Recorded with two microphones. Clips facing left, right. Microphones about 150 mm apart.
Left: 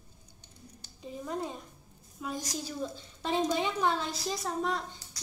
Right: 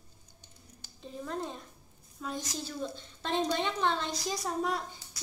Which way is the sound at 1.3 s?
10° left (ahead or behind).